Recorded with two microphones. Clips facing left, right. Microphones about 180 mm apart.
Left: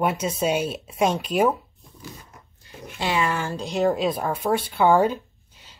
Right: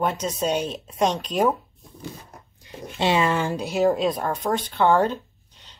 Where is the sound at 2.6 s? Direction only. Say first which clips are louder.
Right 5 dB; 25° right (ahead or behind).